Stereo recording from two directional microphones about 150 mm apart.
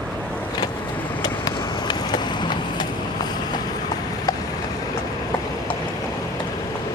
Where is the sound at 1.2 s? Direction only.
25° left (ahead or behind).